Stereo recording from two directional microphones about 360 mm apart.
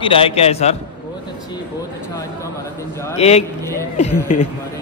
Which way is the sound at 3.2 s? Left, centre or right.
Centre.